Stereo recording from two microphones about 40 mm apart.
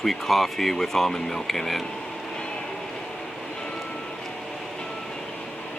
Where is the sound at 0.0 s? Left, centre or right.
Centre.